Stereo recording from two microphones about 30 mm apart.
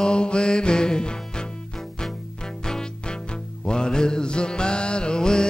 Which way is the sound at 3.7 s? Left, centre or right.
Left.